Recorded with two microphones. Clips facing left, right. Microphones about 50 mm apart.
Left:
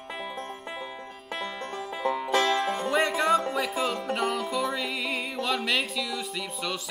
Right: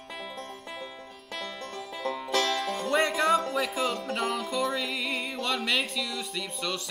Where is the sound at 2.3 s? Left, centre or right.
Centre.